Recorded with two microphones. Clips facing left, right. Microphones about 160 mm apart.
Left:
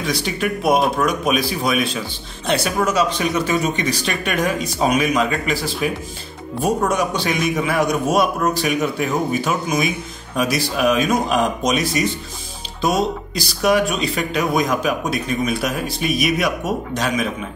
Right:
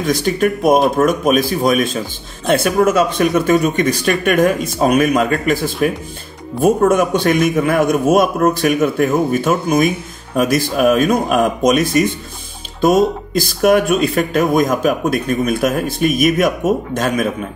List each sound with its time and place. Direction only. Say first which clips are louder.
0.0 s a man's voice: right 7 dB; 45° right (ahead or behind)